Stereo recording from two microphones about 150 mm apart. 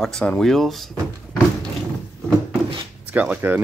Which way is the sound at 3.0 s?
10° right (ahead or behind).